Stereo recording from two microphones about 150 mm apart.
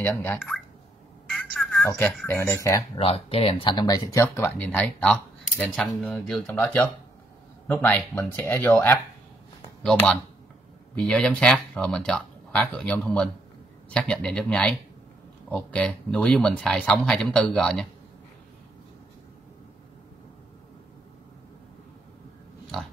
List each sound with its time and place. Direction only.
0.0 s speech: 15° left (ahead or behind)
1.3 s telephone: centre (ahead or behind)
2.2 s speech: 15° left (ahead or behind)
3.0 s speech: 40° left (ahead or behind); by 8.9 s 15° left (ahead or behind)
11.0 s speech: 5° left (ahead or behind)